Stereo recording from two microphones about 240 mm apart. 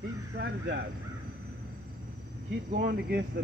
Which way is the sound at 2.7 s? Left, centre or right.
Right.